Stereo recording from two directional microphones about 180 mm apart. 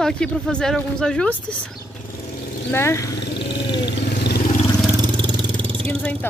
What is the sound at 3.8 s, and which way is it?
Vehicle, 65° left (ahead or behind).